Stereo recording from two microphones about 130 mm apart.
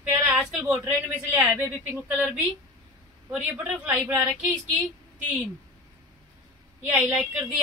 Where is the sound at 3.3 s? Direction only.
10° right (ahead or behind).